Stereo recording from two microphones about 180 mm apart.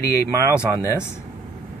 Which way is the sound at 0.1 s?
15° left (ahead or behind).